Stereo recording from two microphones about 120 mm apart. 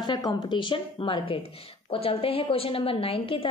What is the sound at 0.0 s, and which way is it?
A woman's voice, 40° left (ahead or behind).